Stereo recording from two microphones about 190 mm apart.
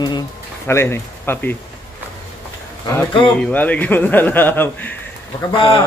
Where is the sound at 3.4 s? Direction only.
5° left (ahead or behind).